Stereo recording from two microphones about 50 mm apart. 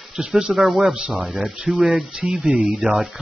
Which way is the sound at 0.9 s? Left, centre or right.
Right.